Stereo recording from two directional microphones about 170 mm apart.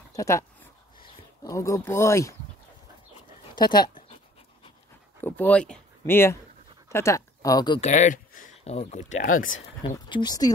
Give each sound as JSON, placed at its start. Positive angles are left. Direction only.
{"t": 0.1, "sound": "speech", "side_deg": 15}
{"t": 3.2, "sound": "dog", "side_deg": 25}
{"t": 5.2, "sound": "speech", "side_deg": 10}
{"t": 7.8, "sound": "speech", "side_deg": 45}
{"t": 9.8, "sound": "speech", "side_deg": 30}